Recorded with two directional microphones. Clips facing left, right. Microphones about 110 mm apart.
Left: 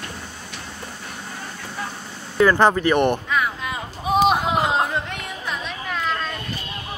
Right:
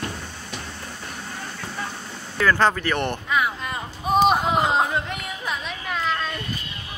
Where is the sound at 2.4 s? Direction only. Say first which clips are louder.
Left 4 dB; 15° left (ahead or behind).